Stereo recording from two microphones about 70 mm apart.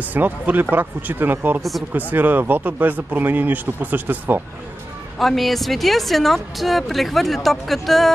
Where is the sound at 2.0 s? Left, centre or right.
Right.